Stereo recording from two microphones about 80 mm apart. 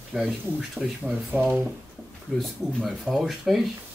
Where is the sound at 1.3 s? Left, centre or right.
Right.